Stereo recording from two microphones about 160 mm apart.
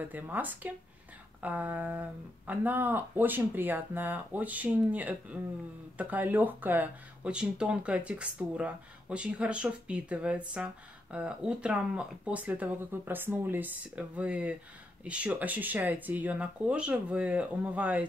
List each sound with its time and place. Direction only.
0.0 s speech: 10° right (ahead or behind)